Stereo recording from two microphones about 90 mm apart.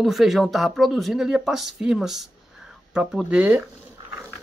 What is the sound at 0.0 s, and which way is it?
Speech, centre (ahead or behind).